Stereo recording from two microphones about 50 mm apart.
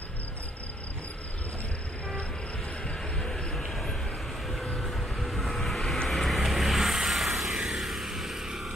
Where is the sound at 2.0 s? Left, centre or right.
Left.